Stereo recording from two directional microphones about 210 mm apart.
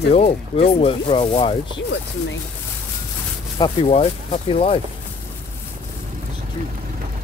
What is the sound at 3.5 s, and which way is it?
Speech, 25° left (ahead or behind).